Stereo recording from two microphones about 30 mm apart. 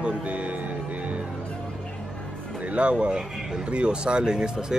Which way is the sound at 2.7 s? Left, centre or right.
Right.